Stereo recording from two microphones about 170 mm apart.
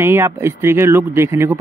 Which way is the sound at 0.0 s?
15° right (ahead or behind).